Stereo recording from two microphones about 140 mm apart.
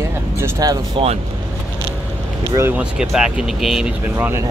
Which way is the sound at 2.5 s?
15° right (ahead or behind).